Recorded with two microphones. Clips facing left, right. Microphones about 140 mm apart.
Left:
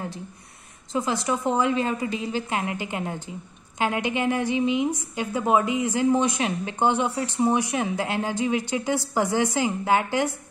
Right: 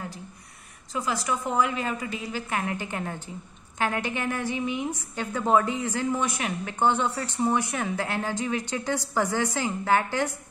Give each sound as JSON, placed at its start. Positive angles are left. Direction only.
{"t": 0.9, "sound": "a woman's voice", "side_deg": 25}